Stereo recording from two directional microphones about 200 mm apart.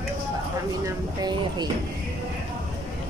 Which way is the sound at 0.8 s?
20° right (ahead or behind).